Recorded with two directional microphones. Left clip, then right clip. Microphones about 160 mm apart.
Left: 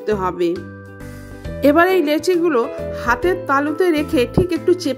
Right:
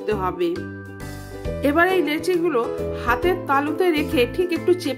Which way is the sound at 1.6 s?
40° left (ahead or behind).